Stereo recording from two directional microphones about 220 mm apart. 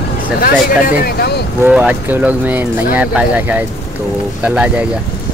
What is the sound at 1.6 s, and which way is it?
Speech, 5° right (ahead or behind).